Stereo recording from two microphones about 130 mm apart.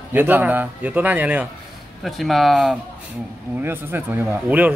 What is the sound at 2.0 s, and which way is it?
Speech, centre (ahead or behind).